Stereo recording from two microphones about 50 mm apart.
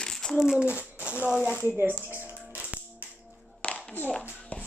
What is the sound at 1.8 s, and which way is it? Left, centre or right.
Speech, right.